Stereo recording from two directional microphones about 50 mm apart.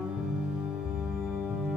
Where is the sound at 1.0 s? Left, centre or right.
Centre.